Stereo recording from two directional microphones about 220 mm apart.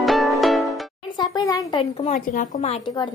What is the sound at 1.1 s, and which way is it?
A child's voice, 20° left (ahead or behind).